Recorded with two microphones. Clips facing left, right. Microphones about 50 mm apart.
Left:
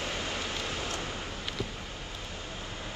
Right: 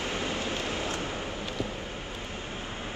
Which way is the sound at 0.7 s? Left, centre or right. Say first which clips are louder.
Right 3 dB; right.